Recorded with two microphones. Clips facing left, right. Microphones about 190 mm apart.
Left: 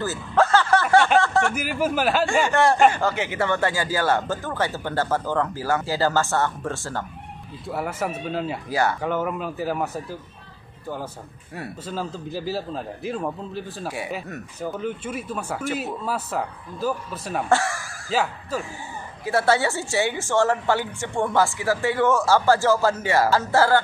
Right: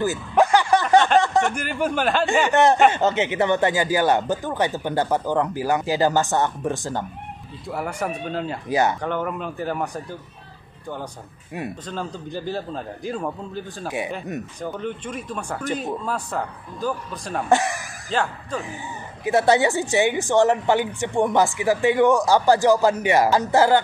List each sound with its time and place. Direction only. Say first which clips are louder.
0.0 s a sound: right 2 dB; 15° right (ahead or behind)
1.5 s a man's voice: even; 5° left (ahead or behind)
2.4 s a woman's voice: right 2 dB; 20° right (ahead or behind)
7.6 s a man's voice: even; centre (ahead or behind)
8.6 s speech: right 3 dB; 20° right (ahead or behind)
9.0 s a man's voice: left 1 dB; 5° left (ahead or behind)
11.8 s a man's voice: even; 5° left (ahead or behind)
13.8 s speech: right 4 dB; 20° right (ahead or behind)
14.6 s a man's voice: left 4 dB; 5° left (ahead or behind)
17.5 s a woman's voice: right 3 dB; 20° right (ahead or behind)
18.1 s a man's voice: even; 5° left (ahead or behind)
18.6 s a woman's voice: right 1 dB; 20° right (ahead or behind)